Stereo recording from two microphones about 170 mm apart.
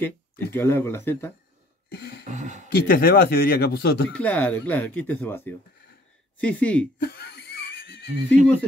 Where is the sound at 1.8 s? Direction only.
70° left (ahead or behind).